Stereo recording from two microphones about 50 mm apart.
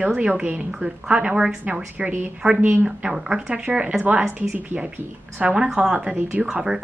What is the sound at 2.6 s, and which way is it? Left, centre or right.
Speech, right.